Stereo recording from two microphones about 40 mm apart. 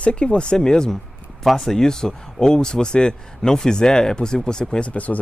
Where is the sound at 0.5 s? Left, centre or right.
Centre.